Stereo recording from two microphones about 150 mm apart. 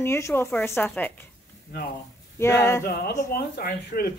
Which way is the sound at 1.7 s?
80° left.